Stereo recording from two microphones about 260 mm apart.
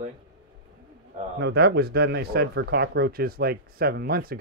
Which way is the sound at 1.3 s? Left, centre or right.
Right.